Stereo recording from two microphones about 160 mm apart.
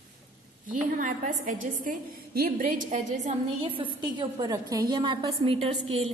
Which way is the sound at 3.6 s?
30° right (ahead or behind).